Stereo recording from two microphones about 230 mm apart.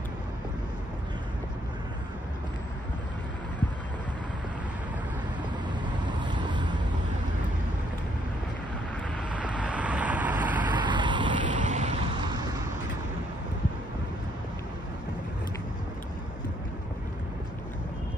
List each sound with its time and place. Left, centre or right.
6.3 s vehicle: centre
9.3 s vehicle: centre
10.6 s a sound: centre
11.4 s vehicle: right
12.2 s vehicle: centre